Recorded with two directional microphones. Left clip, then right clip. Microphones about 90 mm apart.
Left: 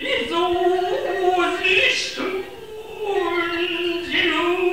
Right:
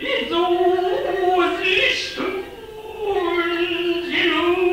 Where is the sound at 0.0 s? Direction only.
35° left (ahead or behind).